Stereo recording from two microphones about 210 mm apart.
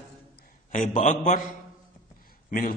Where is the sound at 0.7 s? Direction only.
35° left (ahead or behind).